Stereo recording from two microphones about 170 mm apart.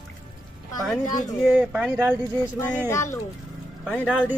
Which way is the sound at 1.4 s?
5° right (ahead or behind).